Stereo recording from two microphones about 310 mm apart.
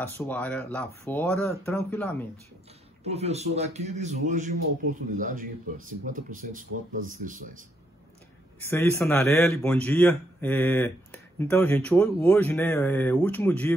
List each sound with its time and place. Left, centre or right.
0.0 s a man's voice: centre
3.1 s a man's voice: centre
8.5 s a man's voice: centre